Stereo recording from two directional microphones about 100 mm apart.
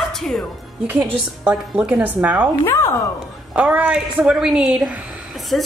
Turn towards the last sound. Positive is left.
turn(degrees=0)  # may be behind; listen again after turning